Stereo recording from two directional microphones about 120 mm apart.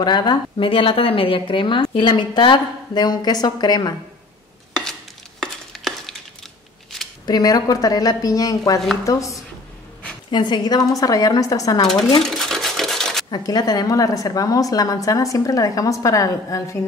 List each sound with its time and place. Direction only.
0.0 s a woman's voice: 35° left (ahead or behind)
5.4 s stir: centre (ahead or behind)
7.2 s a woman's voice: 35° left (ahead or behind)
10.3 s a woman's voice: 40° left (ahead or behind)
12.2 s a sound: 5° left (ahead or behind)
13.3 s a woman's voice: 35° left (ahead or behind)